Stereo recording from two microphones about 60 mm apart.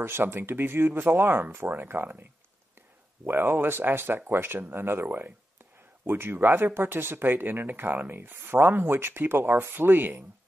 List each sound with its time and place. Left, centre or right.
0.0 s speech: right
3.3 s speech: right